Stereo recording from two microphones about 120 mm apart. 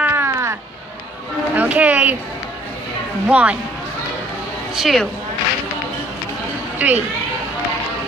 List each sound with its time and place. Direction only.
0.0 s music: 20° right (ahead or behind)
1.5 s a sound: 15° right (ahead or behind)
3.3 s speech: 10° right (ahead or behind)
4.7 s a woman's voice: centre (ahead or behind)
6.8 s speech: 10° right (ahead or behind)